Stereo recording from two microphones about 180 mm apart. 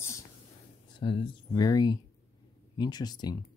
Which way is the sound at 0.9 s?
30° left (ahead or behind).